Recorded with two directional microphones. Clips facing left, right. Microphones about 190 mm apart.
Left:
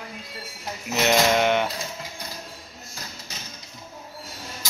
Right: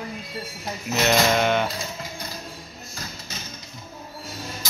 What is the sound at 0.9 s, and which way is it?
Speech, 15° left (ahead or behind).